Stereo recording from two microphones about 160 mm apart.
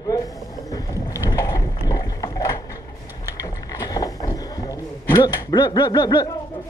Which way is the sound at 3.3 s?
20° left (ahead or behind).